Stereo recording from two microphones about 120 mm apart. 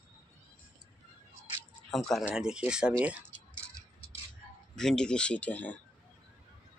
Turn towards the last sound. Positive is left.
turn(degrees=10)  # may be behind; listen again after turning